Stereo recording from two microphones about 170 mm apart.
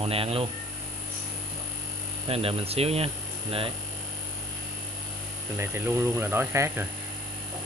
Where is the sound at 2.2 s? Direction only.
35° right (ahead or behind).